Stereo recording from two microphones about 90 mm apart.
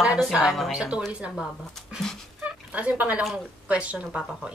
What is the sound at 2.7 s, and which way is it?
Speech, 15° right (ahead or behind).